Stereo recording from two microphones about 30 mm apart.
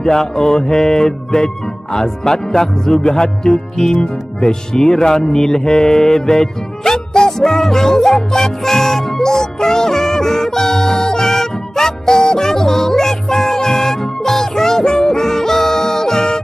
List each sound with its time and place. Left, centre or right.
0.0 s music: centre
1.9 s speech: centre
4.0 s music: left